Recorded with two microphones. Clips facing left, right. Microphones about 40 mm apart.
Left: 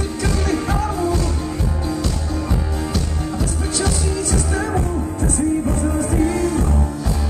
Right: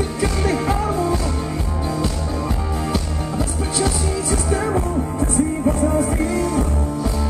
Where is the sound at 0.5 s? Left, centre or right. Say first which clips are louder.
Right 1 dB; centre.